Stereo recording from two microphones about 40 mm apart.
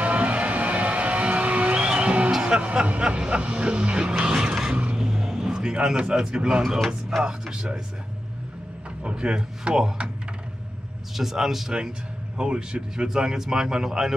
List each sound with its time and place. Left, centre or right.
0.0 s music: right
4.1 s music: centre
4.9 s vehicle: centre
7.2 s speech: right
9.0 s speech: right
11.1 s speech: centre
12.4 s speech: right